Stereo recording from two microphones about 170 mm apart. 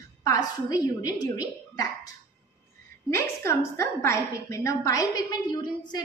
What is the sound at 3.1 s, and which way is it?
A woman's voice, 15° left (ahead or behind).